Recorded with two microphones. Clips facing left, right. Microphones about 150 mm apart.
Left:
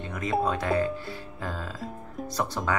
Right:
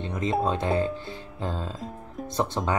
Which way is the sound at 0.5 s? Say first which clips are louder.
Right 1 dB; 25° right (ahead or behind).